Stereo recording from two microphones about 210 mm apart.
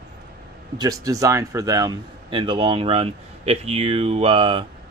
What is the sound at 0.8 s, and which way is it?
Speech, 15° right (ahead or behind).